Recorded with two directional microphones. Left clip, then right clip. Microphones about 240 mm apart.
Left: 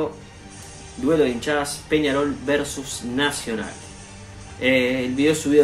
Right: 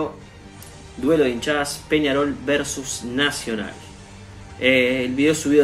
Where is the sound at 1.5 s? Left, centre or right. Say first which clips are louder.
Right 1 dB; centre.